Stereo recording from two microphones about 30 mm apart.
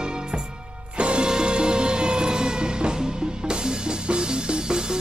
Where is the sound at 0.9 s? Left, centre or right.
Right.